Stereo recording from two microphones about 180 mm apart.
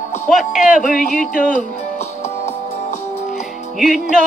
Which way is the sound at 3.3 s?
Centre (ahead or behind).